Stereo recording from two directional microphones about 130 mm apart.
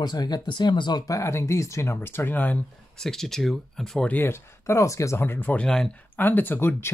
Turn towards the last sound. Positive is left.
turn(degrees=15)  # may be behind; listen again after turning